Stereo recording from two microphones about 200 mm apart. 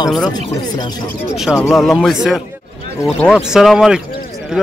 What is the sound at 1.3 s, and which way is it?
Speech, centre (ahead or behind).